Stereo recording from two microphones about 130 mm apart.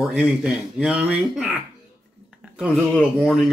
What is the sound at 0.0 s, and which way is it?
Speech, 5° right (ahead or behind).